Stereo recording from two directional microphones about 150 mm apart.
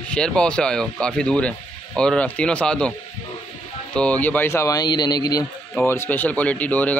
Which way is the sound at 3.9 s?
10° left (ahead or behind).